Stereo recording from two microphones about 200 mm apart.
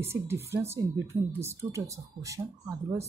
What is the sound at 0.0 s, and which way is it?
Speech, 10° right (ahead or behind).